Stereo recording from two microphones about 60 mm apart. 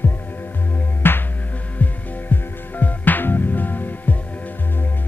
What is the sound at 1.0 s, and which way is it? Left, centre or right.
Music, left.